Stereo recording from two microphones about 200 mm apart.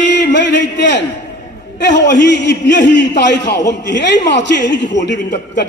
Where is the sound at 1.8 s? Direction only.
60° left (ahead or behind).